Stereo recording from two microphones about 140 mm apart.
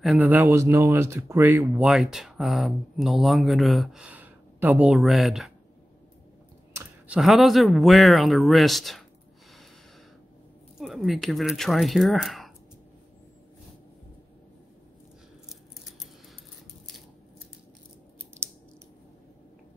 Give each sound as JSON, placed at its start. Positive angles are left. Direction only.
{"t": 0.2, "sound": "speech", "side_deg": -15}
{"t": 1.9, "sound": "speech", "side_deg": -5}
{"t": 7.1, "sound": "speech", "side_deg": 0}
{"t": 10.8, "sound": "speech", "side_deg": 0}